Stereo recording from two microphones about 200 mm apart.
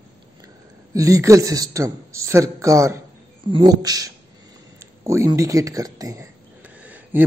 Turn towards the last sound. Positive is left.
turn(degrees=-10)  # may be behind; listen again after turning